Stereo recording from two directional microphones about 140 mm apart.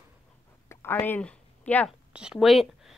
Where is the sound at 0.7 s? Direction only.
15° left (ahead or behind).